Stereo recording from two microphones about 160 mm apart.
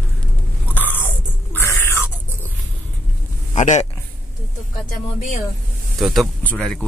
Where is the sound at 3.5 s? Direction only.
50° left (ahead or behind).